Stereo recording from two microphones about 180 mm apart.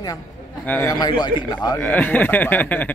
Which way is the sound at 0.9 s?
20° left (ahead or behind).